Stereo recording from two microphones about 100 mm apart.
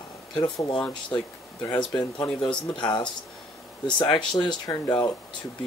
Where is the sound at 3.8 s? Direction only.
50° left (ahead or behind).